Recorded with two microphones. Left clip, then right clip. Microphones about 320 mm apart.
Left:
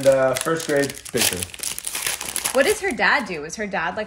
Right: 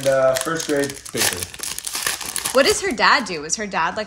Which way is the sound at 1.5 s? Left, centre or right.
Centre.